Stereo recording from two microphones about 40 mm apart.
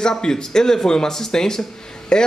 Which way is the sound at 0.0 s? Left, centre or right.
Centre.